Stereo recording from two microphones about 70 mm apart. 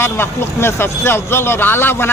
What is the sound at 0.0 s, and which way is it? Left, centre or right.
Speech, left.